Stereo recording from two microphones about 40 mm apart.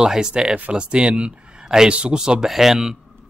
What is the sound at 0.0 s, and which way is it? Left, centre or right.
A man's voice, centre.